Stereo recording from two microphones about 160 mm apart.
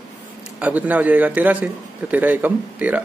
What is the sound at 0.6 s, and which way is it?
A man's voice, 10° right (ahead or behind).